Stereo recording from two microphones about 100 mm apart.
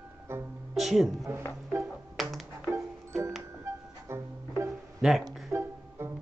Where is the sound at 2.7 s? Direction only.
25° right (ahead or behind).